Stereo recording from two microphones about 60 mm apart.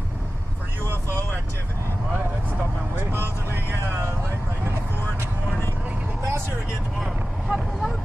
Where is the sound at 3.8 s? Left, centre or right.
Right.